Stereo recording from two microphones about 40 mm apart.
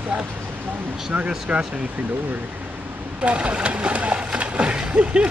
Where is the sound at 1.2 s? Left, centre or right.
Right.